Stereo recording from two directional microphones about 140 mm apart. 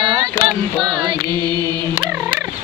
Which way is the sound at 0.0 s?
35° right (ahead or behind).